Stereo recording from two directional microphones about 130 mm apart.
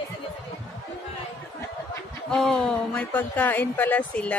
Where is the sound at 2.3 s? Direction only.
5° left (ahead or behind).